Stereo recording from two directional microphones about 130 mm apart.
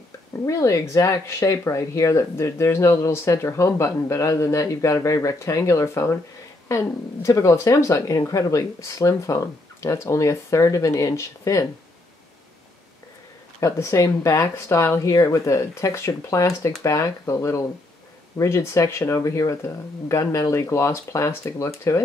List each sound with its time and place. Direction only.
0.5 s speech: 25° left (ahead or behind)
7.2 s speech: 25° left (ahead or behind)
13.6 s speech: 25° left (ahead or behind)